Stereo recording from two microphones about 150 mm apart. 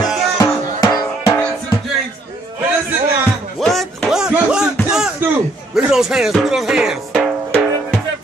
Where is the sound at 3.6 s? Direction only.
Centre (ahead or behind).